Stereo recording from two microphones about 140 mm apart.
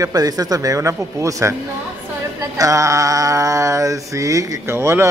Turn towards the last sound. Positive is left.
turn(degrees=-20)  # may be behind; listen again after turning